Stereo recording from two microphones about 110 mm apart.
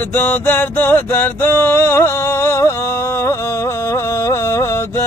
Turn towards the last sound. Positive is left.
turn(degrees=25)  # may be behind; listen again after turning